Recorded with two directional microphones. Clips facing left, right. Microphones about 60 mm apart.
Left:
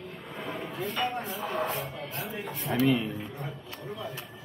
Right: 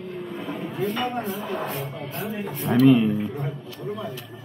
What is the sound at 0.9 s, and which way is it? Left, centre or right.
Speech, right.